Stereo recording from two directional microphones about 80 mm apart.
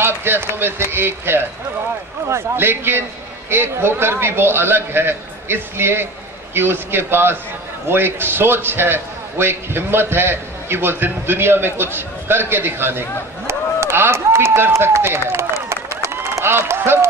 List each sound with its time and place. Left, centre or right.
0.0 s a man's voice: right
13.5 s run: right